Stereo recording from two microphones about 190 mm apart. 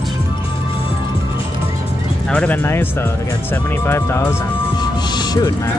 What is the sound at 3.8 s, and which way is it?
Speech, 10° left (ahead or behind).